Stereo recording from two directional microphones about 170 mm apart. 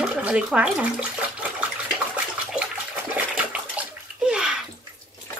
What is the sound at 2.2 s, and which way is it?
Water, 10° right (ahead or behind).